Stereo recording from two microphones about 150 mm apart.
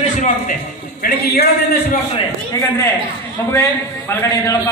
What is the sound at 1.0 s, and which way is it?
Speech, 90° left.